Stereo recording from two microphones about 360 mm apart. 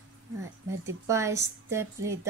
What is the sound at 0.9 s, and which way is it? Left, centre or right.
Speech, centre.